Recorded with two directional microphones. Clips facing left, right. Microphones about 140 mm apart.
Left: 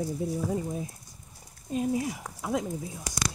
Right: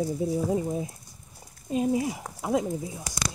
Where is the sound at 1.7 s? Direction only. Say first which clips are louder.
Right 3 dB; 15° right (ahead or behind).